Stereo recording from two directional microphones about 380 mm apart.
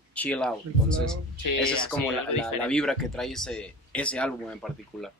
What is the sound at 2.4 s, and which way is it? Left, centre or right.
Speech, centre.